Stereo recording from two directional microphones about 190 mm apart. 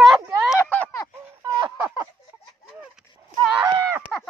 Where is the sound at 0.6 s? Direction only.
15° left (ahead or behind).